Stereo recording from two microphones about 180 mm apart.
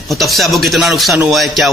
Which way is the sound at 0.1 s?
Centre (ahead or behind).